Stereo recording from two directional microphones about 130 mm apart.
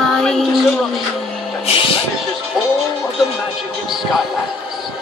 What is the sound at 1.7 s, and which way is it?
Speech, 45° left (ahead or behind).